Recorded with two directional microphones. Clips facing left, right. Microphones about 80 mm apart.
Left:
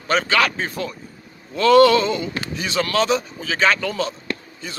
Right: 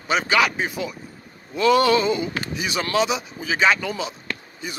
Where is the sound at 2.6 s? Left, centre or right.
Centre.